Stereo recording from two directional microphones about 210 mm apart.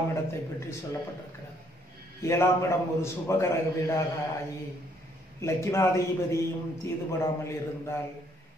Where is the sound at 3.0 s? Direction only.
15° left (ahead or behind).